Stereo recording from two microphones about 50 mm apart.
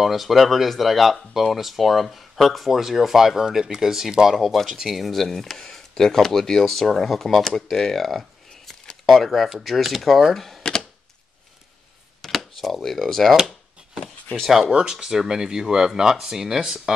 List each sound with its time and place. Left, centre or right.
0.0 s speech: centre
10.6 s typewriter: centre
12.2 s speech: centre
14.4 s speech: centre
14.7 s speech: centre